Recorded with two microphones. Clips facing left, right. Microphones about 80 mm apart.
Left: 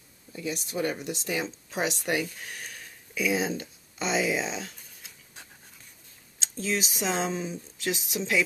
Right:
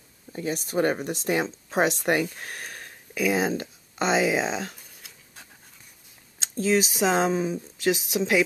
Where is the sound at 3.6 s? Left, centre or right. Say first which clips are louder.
Right 6 dB; right.